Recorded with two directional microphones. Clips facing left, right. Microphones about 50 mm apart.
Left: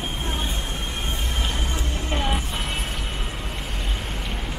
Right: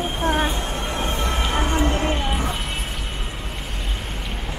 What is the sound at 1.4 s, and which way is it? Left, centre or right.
Music, right.